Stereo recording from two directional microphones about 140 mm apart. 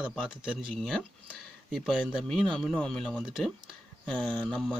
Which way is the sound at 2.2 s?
5° left (ahead or behind).